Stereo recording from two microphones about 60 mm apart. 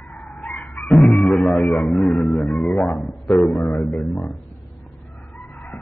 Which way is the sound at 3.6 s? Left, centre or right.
Left.